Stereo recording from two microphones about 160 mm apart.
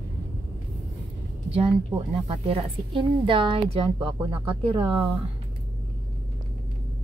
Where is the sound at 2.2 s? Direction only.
35° right (ahead or behind).